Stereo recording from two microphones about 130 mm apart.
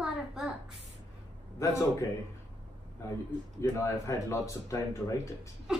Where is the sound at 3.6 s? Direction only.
25° left (ahead or behind).